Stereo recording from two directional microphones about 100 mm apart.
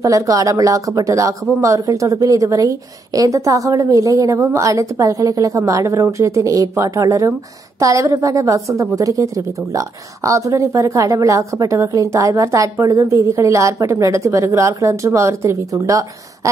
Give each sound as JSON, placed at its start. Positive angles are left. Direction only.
{"t": 0.0, "sound": "a woman's voice", "side_deg": -35}